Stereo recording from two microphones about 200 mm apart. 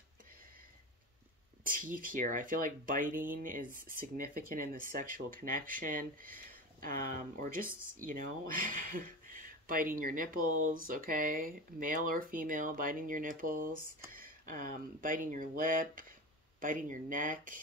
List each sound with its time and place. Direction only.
1.6 s speech: 45° right (ahead or behind)